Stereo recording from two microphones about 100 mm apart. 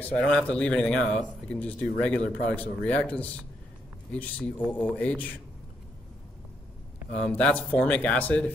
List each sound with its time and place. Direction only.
0.0 s speech: 10° left (ahead or behind)
7.2 s speech: 10° left (ahead or behind)